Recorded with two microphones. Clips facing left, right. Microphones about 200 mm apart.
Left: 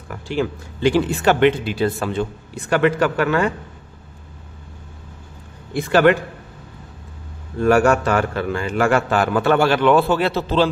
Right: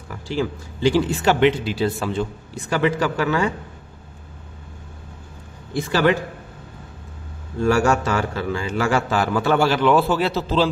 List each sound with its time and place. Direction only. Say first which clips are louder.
0.1 s speech: left 2 dB; 55° left (ahead or behind)
5.8 s speech: left 4 dB; 55° left (ahead or behind)
7.6 s speech: left 3 dB; 55° left (ahead or behind)
9.8 s speech: left 2 dB; centre (ahead or behind)